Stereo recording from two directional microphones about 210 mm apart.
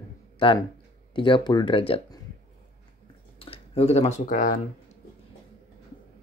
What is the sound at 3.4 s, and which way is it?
Speech, 30° left (ahead or behind).